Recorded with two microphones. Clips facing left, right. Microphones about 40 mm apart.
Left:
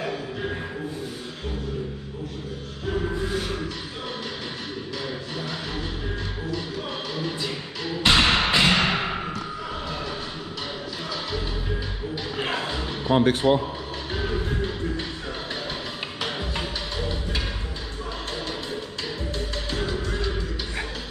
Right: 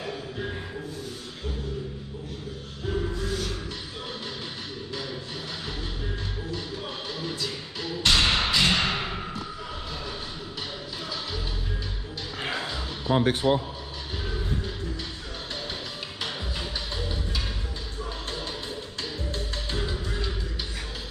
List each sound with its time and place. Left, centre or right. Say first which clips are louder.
3.3 s music: left 3 dB; left
7.2 s music: left 3 dB; left
12.7 s a sound: left 3 dB; left
13.4 s a man's voice: left 3 dB; left
14.1 s music: left 5 dB; left
19.9 s music: left 4 dB; centre